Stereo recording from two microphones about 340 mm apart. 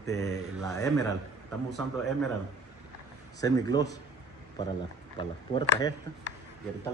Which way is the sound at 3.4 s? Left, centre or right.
Centre.